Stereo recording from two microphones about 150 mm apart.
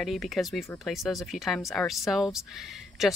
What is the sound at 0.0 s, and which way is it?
Speech, centre (ahead or behind).